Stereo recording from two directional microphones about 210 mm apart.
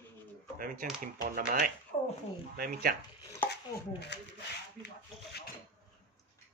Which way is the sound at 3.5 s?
50° left (ahead or behind).